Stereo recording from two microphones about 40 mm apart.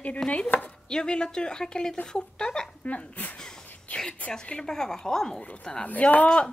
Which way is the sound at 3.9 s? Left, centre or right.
Left.